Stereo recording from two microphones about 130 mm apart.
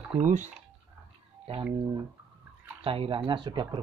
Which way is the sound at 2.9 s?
45° right (ahead or behind).